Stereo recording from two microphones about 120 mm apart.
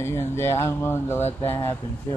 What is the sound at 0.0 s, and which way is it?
Speech, 20° left (ahead or behind).